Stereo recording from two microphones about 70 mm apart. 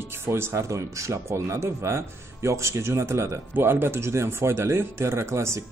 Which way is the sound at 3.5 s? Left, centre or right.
Right.